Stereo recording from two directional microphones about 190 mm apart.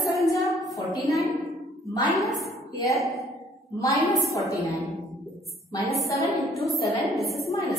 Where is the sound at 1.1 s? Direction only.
15° left (ahead or behind).